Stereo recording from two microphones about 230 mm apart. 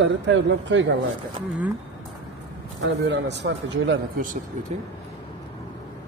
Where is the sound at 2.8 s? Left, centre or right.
Right.